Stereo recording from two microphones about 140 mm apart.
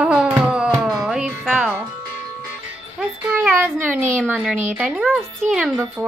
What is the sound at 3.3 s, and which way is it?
A woman's voice, 15° right (ahead or behind).